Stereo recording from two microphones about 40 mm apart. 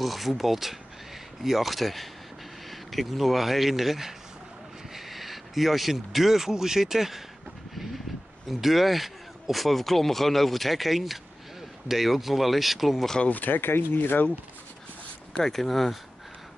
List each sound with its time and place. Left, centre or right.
0.0 s speech: centre
7.7 s vehicle: centre
8.5 s speech: centre
13.3 s speech: left
13.6 s speech: left
15.3 s speech: centre